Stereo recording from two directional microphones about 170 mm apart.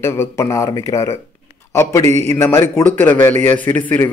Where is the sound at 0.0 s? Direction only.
15° left (ahead or behind).